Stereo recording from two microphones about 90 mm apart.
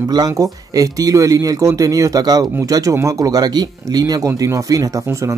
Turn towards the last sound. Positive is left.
turn(degrees=-40)  # may be behind; listen again after turning